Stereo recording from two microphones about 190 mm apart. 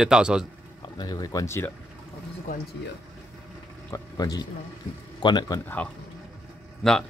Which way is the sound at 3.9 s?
20° left (ahead or behind).